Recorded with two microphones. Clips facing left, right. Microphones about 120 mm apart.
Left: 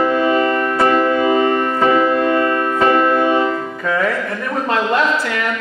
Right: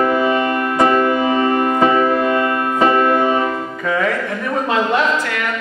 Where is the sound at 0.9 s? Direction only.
15° right (ahead or behind).